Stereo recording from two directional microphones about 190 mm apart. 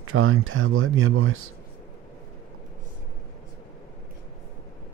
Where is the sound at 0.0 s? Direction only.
90° right.